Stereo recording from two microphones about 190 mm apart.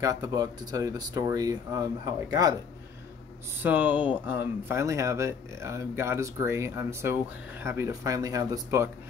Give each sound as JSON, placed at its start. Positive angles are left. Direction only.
{"t": 0.0, "sound": "speech", "side_deg": -20}
{"t": 3.6, "sound": "speech", "side_deg": -10}